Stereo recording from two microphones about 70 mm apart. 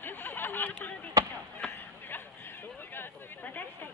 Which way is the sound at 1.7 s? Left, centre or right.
Left.